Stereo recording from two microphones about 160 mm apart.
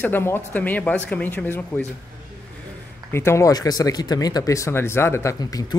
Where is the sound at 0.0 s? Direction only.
15° left (ahead or behind).